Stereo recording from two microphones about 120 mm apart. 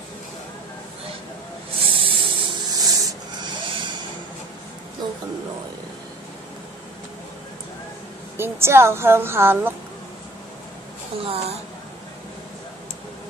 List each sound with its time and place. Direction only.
2.0 s rub: 45° right (ahead or behind)
2.7 s a sound: 30° right (ahead or behind)
8.4 s a woman's voice: 20° right (ahead or behind)
11.2 s a woman's voice: 55° right (ahead or behind)